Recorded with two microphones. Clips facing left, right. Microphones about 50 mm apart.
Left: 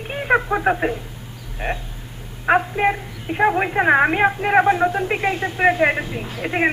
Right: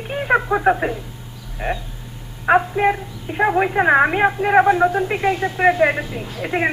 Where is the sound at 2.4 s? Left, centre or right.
Centre.